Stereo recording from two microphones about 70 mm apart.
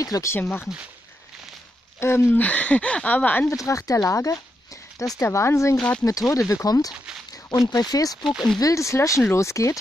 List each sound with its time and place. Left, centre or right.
0.0 s speech: left
0.4 s speech: left
2.0 s speech: left
2.3 s speech: left
3.4 s speech: left
5.8 s speech: centre
6.0 s speech: left
6.9 s a sound: centre
7.6 s speech: left
8.2 s speech: centre
8.5 s speech: left